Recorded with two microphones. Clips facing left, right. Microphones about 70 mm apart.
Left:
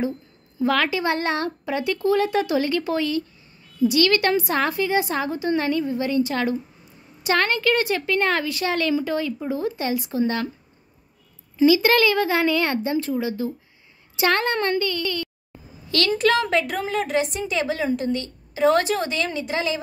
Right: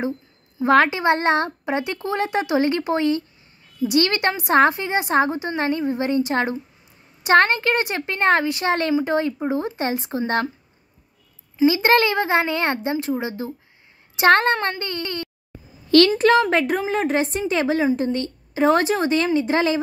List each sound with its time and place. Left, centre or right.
0.6 s a woman's voice: right
11.6 s a woman's voice: right